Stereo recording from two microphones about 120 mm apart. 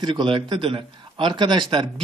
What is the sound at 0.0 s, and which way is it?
Speech, 40° right (ahead or behind).